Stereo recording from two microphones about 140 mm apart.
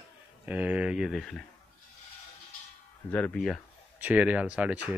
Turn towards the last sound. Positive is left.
turn(degrees=-10)  # may be behind; listen again after turning